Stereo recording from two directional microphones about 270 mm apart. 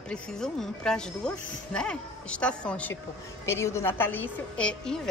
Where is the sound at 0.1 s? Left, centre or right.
Centre.